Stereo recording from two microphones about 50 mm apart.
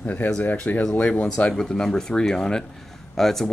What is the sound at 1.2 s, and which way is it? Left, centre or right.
Speech, centre.